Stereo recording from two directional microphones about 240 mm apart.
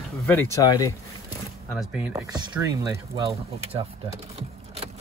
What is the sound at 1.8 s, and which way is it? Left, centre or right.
Speech, centre.